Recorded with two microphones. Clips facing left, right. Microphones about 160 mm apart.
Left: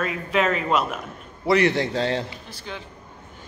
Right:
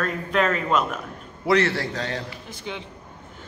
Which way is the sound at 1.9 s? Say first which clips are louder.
Left 6 dB; 30° left (ahead or behind).